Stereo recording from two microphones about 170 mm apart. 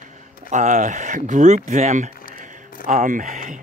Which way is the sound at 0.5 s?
45° right (ahead or behind).